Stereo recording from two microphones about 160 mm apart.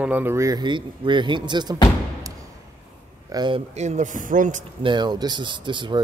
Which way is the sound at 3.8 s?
50° right (ahead or behind).